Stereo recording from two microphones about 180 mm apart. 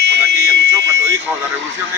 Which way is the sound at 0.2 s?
15° right (ahead or behind).